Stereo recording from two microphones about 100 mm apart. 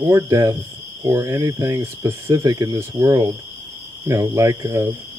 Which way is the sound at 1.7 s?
30° right (ahead or behind).